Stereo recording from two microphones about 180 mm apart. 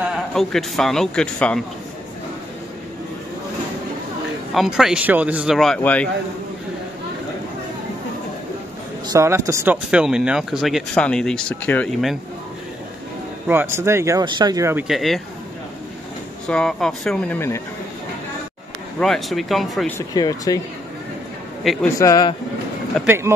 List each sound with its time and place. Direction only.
0.3 s speech: centre (ahead or behind)
4.6 s speech: centre (ahead or behind)
9.1 s speech: 15° right (ahead or behind); by 12.2 s 5° left (ahead or behind)
13.5 s speech: 15° right (ahead or behind)
14.9 s speech: centre (ahead or behind)
16.4 s speech: 5° left (ahead or behind)
18.9 s speech: centre (ahead or behind)
20.0 s speech: 20° left (ahead or behind)
21.9 s speech: 20° left (ahead or behind)
23.0 s speech: 15° right (ahead or behind)